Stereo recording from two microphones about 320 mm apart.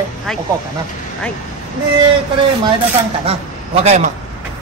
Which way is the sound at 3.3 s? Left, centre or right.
Centre.